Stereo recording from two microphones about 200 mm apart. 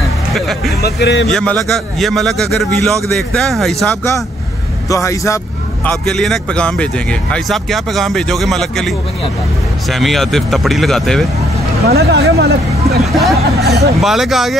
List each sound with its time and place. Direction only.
0.3 s speech: centre (ahead or behind)
0.8 s a man's voice: 55° left (ahead or behind)
1.3 s speech: 5° left (ahead or behind)
4.8 s a man's voice: 15° left (ahead or behind)
5.9 s speech: 5° left (ahead or behind)
11.9 s speech: 55° right (ahead or behind)
13.0 s speech: centre (ahead or behind)